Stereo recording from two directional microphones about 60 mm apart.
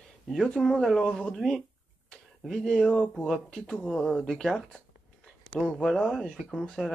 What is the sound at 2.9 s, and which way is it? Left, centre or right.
Speech, left.